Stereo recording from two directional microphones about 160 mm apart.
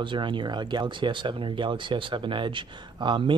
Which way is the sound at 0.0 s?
30° right (ahead or behind).